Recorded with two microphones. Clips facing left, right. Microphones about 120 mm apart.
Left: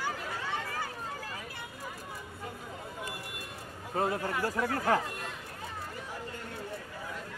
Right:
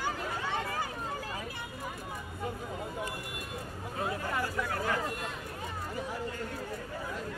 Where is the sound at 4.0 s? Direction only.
45° left (ahead or behind).